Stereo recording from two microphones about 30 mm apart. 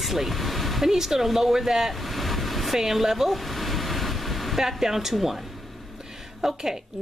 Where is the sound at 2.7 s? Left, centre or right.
Centre.